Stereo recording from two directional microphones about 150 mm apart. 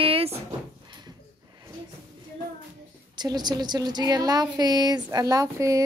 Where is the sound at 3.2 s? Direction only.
30° right (ahead or behind).